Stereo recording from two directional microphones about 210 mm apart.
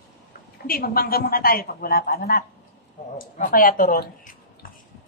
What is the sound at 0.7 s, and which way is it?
A woman's voice, 45° left (ahead or behind).